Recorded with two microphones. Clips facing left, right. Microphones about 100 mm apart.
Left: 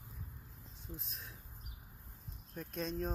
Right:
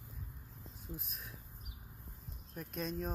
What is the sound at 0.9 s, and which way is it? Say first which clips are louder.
Speech: right 2 dB; 5° right (ahead or behind).